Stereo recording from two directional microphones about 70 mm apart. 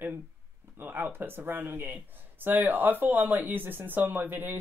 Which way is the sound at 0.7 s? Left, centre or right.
Right.